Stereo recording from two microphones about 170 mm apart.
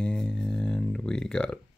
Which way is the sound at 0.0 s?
5° left (ahead or behind).